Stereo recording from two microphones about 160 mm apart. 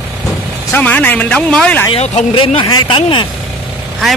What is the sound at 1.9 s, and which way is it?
Speech, 40° left (ahead or behind).